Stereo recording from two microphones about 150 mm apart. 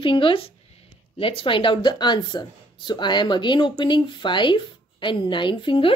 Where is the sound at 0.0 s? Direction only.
35° left (ahead or behind).